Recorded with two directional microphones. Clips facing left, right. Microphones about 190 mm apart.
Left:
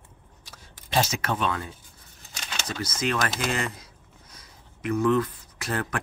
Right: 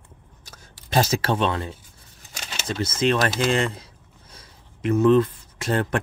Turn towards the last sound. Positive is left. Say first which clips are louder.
# right 6 dB
turn(degrees=-25)  # may be behind; listen again after turning